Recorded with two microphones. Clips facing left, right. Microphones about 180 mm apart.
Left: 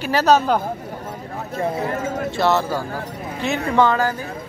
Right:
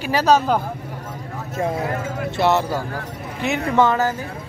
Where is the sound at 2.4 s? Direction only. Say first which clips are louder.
Right 1 dB; 20° right (ahead or behind).